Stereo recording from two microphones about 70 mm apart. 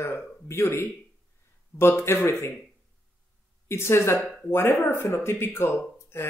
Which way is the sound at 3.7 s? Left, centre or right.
Left.